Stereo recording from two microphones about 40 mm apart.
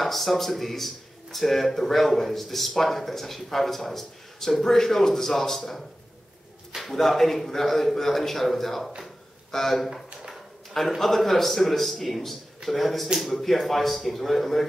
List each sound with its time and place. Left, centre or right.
0.0 s speech: centre
9.0 s a sound: centre
11.0 s speech: centre